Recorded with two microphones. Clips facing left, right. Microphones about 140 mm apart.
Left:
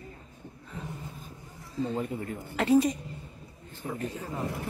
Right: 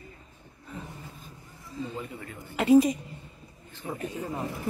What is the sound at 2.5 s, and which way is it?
Speech, 10° right (ahead or behind).